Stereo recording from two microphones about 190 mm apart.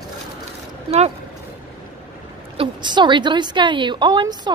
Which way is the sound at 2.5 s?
25° right (ahead or behind).